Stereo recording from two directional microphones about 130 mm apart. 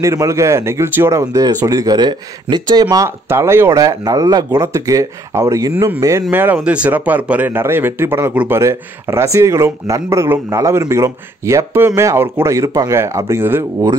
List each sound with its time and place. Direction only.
0.0 s speech: 25° right (ahead or behind)
3.3 s speech: 20° right (ahead or behind)
6.3 s speech: 15° right (ahead or behind)